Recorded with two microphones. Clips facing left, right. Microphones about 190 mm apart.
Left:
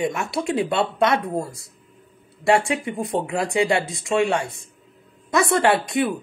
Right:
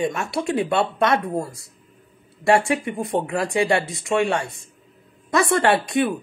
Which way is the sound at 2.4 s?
20° left (ahead or behind).